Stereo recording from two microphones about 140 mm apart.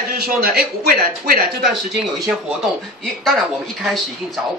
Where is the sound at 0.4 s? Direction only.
90° right.